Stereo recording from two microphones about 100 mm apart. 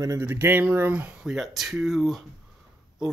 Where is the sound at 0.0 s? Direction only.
35° right (ahead or behind).